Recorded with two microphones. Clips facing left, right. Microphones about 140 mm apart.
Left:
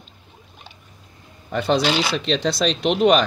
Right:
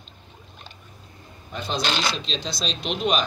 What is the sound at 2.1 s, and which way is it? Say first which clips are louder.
Speech: left 10 dB; 70° left (ahead or behind).